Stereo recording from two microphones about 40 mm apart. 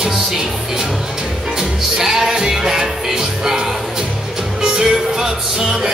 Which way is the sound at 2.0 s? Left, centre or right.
Centre.